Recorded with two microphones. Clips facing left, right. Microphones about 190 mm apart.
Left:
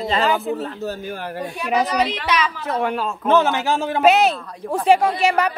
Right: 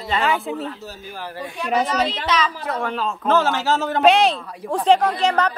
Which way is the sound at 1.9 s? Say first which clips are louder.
Left 1 dB; 10° left (ahead or behind).